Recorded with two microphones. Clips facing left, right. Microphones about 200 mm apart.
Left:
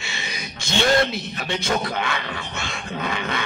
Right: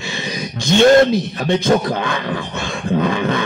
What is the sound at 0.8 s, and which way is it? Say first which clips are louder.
Speech: right 10 dB; 50° right (ahead or behind).